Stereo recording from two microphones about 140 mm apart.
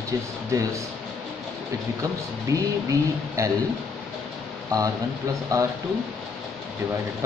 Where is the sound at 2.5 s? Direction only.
20° right (ahead or behind).